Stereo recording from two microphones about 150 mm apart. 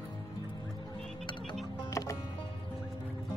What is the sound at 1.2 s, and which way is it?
Music, 25° left (ahead or behind).